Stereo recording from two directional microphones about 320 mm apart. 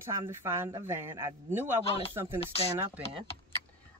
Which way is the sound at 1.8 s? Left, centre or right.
Centre.